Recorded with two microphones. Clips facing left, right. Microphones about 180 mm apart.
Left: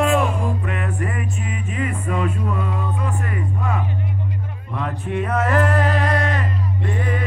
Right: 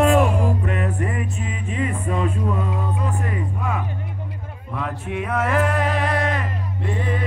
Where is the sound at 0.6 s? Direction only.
35° right (ahead or behind).